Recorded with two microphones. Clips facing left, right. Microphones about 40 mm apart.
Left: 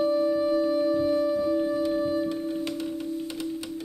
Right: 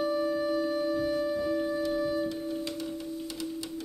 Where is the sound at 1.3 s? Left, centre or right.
Centre.